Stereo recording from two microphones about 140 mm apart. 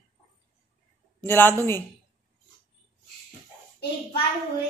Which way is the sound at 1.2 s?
15° left (ahead or behind).